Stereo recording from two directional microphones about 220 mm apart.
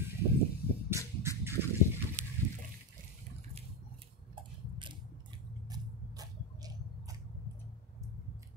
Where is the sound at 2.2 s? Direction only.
30° right (ahead or behind).